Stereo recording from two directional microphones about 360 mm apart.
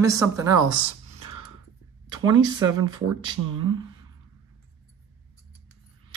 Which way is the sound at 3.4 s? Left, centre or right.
Right.